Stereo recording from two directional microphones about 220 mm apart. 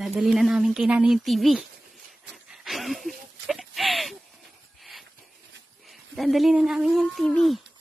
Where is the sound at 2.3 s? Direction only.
Centre (ahead or behind).